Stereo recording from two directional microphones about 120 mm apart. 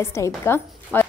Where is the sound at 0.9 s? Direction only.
15° left (ahead or behind).